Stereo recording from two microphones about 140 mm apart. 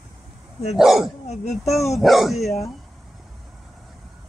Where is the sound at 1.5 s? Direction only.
Centre (ahead or behind).